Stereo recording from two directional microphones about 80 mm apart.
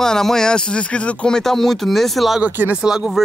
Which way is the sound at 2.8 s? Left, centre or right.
Centre.